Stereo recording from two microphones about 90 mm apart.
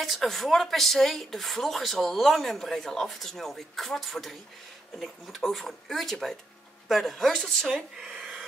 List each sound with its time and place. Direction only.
0.0 s speech: centre (ahead or behind)